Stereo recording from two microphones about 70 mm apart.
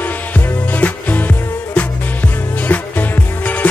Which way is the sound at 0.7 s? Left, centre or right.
Left.